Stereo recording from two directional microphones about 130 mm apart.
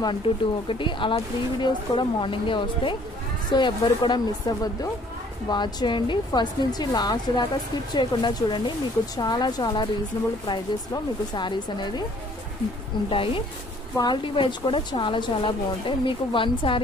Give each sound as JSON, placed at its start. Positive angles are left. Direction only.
{"t": 0.3, "sound": "speech", "side_deg": 40}
{"t": 13.1, "sound": "speech", "side_deg": 40}